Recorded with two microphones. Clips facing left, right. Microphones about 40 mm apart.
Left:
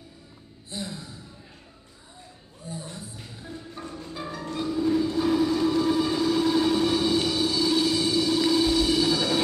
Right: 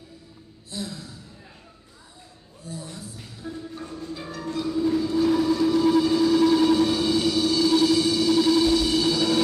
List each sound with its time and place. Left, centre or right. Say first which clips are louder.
0.7 s gasp: right 1 dB; centre
2.6 s a sound: right 1 dB; left
3.9 s music: left 1 dB; centre
4.6 s train: even; centre
5.3 s vehicle: right 1 dB; centre